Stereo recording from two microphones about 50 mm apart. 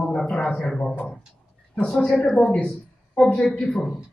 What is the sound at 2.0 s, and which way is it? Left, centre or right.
Speech, centre.